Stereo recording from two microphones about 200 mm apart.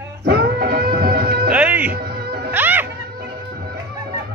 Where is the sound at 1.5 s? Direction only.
5° right (ahead or behind).